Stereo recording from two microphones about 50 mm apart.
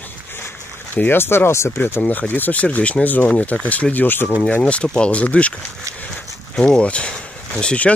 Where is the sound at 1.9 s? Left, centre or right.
Left.